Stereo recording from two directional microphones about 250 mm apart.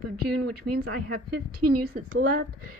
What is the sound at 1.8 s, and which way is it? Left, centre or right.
Speech, right.